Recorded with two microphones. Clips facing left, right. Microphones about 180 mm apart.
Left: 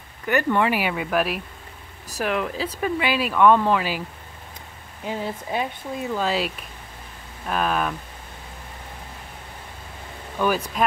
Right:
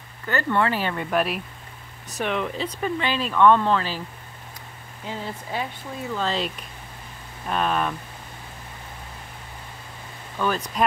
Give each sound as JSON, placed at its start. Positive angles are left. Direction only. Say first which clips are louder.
{"t": 0.3, "sound": "speech", "louder": "left 2 dB", "side_deg": 15}
{"t": 5.0, "sound": "speech", "louder": "left 4 dB", "side_deg": 15}
{"t": 10.4, "sound": "speech", "louder": "left 3 dB", "side_deg": 15}